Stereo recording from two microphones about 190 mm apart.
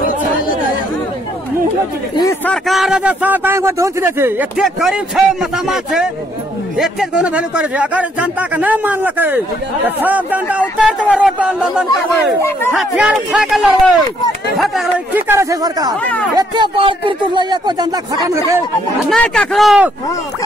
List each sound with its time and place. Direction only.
2.4 s a man's voice: centre (ahead or behind)
12.4 s speech: 15° left (ahead or behind)
12.7 s a man's voice: 5° right (ahead or behind)
15.2 s speech: 15° right (ahead or behind)
19.0 s a man's voice: 5° left (ahead or behind)